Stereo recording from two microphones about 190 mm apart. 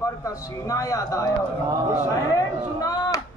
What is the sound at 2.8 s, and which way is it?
Speech, 20° left (ahead or behind).